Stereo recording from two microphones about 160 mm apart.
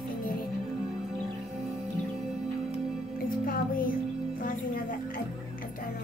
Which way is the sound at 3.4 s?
65° left (ahead or behind).